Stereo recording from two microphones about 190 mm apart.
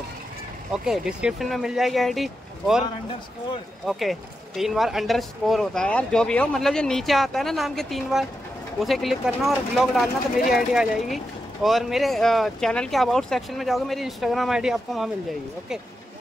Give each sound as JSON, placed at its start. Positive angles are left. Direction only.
{"t": 0.8, "sound": "speech", "side_deg": -5}
{"t": 3.8, "sound": "speech", "side_deg": 0}